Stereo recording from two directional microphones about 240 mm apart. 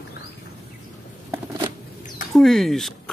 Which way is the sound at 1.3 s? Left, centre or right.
Centre.